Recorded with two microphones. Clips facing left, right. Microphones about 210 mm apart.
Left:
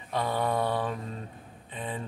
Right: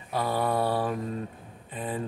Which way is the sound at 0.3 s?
35° right (ahead or behind).